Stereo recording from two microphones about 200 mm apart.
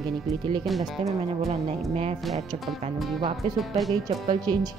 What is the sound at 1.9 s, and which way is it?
Speech, 30° right (ahead or behind).